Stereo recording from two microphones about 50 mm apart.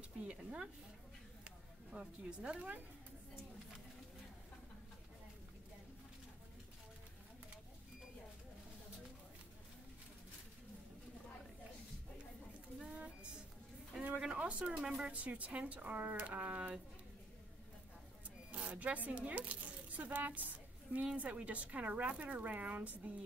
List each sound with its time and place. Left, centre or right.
0.4 s speech: centre
1.9 s a woman's voice: centre
12.9 s a sound: right
14.2 s a woman's voice: right
18.5 s a woman's voice: right